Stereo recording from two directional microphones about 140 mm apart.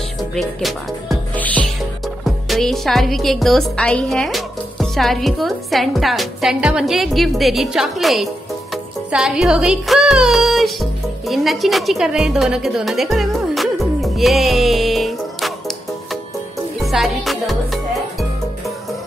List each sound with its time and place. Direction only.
0.2 s a woman's voice: centre (ahead or behind)
1.3 s music: 10° left (ahead or behind)
2.2 s a woman's voice: centre (ahead or behind)
9.1 s music: 5° right (ahead or behind)
16.8 s music: centre (ahead or behind)